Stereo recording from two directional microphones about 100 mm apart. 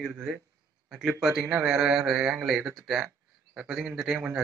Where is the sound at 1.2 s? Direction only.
Centre (ahead or behind).